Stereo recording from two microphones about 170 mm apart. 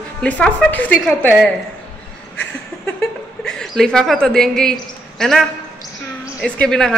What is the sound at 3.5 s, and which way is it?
A man's voice, 5° left (ahead or behind).